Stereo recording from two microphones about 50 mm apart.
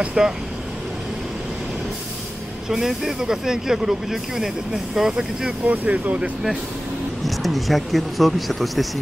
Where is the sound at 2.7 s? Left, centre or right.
Centre.